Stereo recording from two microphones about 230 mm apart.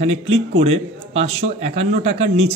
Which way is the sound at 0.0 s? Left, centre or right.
Right.